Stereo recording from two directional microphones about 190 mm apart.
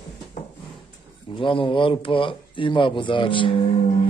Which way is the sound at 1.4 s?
25° left (ahead or behind).